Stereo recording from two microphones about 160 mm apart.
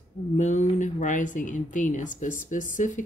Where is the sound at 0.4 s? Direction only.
50° left (ahead or behind).